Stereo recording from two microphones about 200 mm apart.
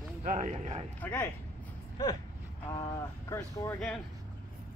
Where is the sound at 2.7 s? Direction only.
15° left (ahead or behind).